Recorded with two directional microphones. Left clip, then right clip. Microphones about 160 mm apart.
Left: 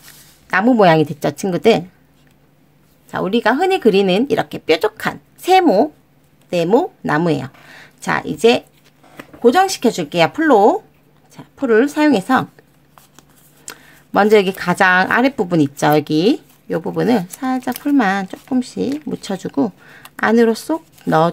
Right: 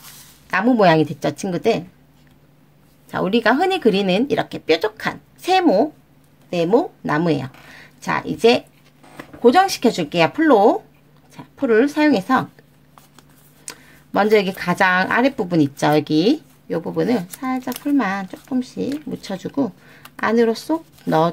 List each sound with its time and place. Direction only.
0.5 s speech: 30° left (ahead or behind)
3.1 s speech: 15° left (ahead or behind)
13.7 s speech: 25° left (ahead or behind)